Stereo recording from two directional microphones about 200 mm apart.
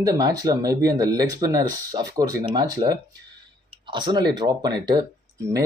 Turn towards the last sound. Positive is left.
turn(degrees=-20)  # may be behind; listen again after turning